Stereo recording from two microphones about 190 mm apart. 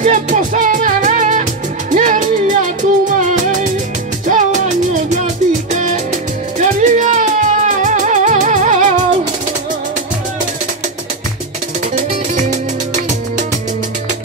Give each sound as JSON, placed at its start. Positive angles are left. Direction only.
{"t": 0.0, "sound": "music", "side_deg": -40}